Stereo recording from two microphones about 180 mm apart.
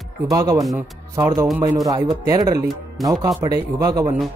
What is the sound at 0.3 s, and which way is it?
Speech, 20° right (ahead or behind).